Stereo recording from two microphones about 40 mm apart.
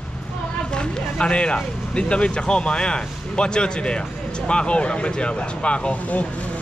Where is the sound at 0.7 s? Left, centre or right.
Left.